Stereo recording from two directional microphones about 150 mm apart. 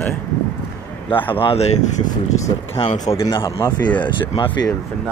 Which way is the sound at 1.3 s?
40° left (ahead or behind).